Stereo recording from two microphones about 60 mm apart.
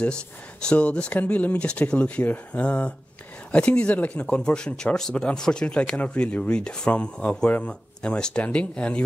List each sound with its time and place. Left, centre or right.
0.7 s speech: centre